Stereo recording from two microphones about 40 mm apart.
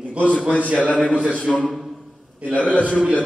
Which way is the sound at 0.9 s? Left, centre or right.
Left.